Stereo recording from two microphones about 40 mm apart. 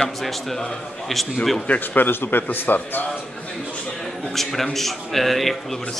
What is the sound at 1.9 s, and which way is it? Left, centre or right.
A man's voice, left.